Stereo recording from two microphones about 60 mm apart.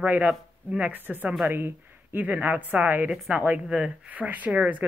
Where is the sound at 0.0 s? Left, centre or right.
Right.